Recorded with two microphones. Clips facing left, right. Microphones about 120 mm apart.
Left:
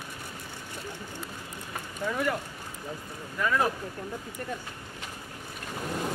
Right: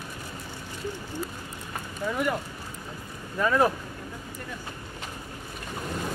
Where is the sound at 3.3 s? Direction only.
35° right (ahead or behind).